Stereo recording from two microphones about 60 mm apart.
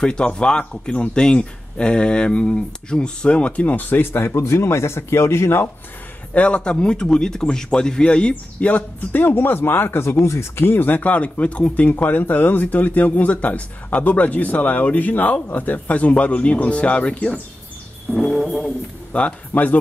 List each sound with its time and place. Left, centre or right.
0.0 s speech: centre; by 4.3 s left
4.3 s speech: left
6.3 s a man's voice: left
18.1 s music: centre
19.1 s a man's voice: left